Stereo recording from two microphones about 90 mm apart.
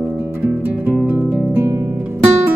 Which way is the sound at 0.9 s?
20° right (ahead or behind).